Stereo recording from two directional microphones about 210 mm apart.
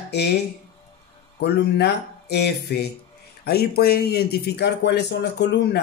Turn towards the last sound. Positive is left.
turn(degrees=50)  # may be behind; listen again after turning